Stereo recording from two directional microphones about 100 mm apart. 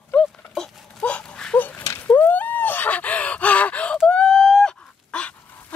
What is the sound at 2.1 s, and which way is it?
Gasp, 15° left (ahead or behind).